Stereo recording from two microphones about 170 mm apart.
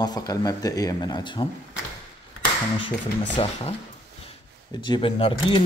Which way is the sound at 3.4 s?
30° left (ahead or behind).